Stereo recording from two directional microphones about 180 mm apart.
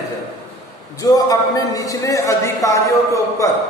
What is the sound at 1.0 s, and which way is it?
A man's voice, 20° left (ahead or behind).